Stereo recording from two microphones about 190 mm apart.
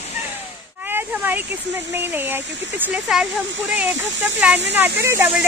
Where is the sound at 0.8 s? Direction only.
10° right (ahead or behind).